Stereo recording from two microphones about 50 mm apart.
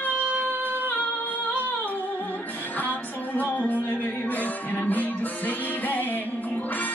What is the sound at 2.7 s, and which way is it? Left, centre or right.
Music, left.